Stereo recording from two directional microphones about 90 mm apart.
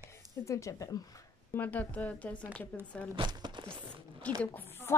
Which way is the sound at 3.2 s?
55° right (ahead or behind).